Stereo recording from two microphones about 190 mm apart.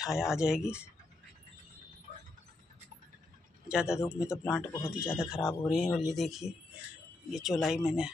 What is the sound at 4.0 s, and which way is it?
Speech, 15° left (ahead or behind).